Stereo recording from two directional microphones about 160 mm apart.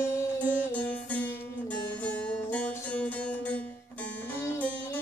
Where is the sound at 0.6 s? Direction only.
10° left (ahead or behind).